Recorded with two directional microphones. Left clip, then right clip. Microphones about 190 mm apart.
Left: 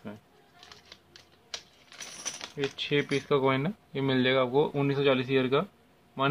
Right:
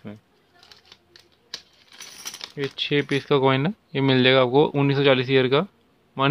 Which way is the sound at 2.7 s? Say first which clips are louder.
Right 6 dB; 45° right (ahead or behind).